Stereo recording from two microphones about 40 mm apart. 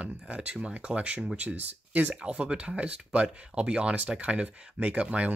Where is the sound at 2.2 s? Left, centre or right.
Right.